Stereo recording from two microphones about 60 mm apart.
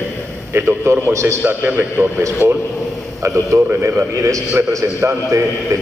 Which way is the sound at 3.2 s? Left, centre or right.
Right.